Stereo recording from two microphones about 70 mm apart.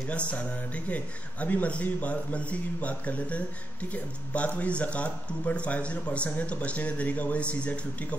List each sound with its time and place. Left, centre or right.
0.3 s speech: centre